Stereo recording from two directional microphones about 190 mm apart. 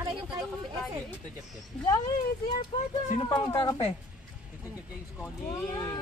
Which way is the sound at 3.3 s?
25° left (ahead or behind).